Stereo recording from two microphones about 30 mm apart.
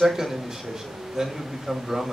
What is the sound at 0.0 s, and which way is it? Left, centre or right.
A man's voice, centre.